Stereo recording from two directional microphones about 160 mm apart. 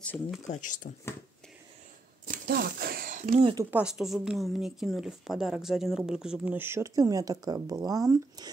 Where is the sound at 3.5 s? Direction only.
10° right (ahead or behind).